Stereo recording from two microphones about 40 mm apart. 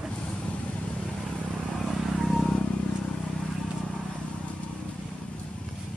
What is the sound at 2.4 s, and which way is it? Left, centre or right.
Vehicle, centre.